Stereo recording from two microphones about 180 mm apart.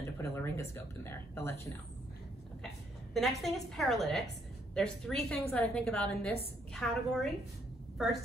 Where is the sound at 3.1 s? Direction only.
Centre (ahead or behind).